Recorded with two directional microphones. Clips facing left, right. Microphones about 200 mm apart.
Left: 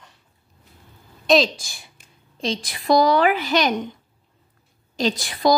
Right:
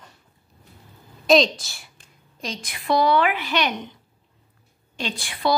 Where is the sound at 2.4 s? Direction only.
35° left (ahead or behind).